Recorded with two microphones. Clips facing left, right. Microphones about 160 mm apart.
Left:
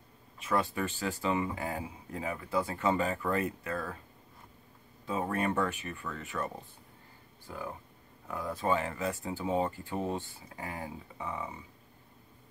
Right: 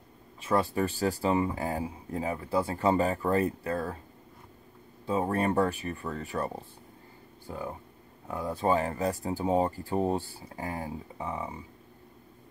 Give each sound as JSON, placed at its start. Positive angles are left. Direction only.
{"t": 0.4, "sound": "speech", "side_deg": -35}
{"t": 5.0, "sound": "speech", "side_deg": -30}